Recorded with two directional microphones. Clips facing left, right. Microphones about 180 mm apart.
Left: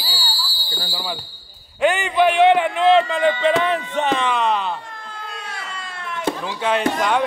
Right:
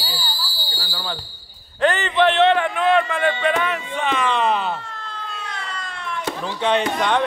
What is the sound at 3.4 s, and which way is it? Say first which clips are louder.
Speech: left 3 dB; 30° left (ahead or behind).